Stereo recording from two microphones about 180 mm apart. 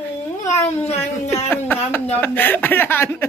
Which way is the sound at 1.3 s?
10° left (ahead or behind).